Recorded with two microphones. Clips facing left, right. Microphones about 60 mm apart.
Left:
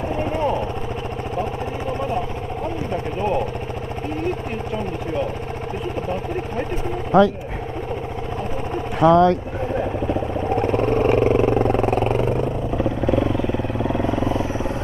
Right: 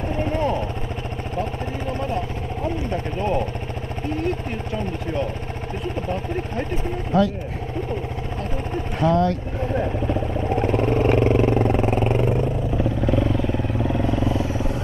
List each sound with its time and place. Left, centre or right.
0.1 s vehicle: centre
2.9 s a sound: centre
7.1 s speech: left
9.0 s speech: left
9.8 s vehicle: centre
13.8 s vehicle: centre
14.1 s vehicle: left